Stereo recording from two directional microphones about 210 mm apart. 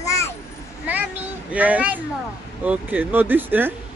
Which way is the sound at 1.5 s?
5° right (ahead or behind).